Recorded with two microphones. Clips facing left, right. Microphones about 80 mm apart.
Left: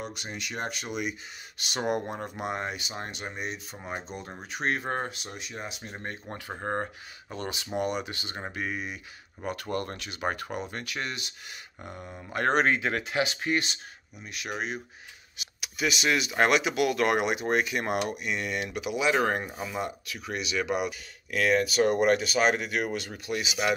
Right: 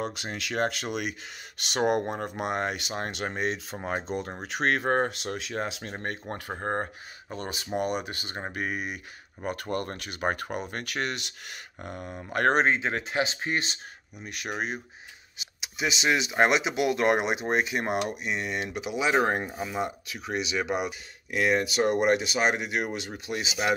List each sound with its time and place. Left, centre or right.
0.3 s speech: right
1.6 s speech: right
4.8 s speech: right
5.2 s speech: right
6.2 s speech: right
6.5 s speech: right
9.4 s speech: right
12.3 s speech: right
12.5 s speech: right
14.2 s speech: right
15.6 s speech: right